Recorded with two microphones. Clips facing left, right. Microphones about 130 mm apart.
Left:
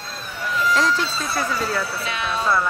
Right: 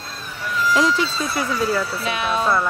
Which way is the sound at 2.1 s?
15° right (ahead or behind).